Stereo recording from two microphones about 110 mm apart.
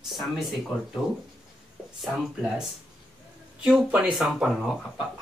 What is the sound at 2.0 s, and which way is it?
Speech, 5° right (ahead or behind).